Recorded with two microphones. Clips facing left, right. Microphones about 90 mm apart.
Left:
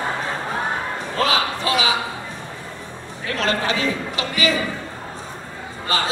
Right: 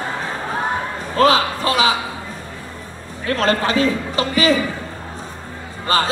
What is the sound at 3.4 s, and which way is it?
A man's voice, 40° right (ahead or behind).